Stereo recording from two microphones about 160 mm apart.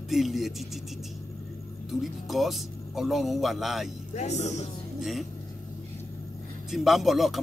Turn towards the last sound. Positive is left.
turn(degrees=0)  # may be behind; listen again after turning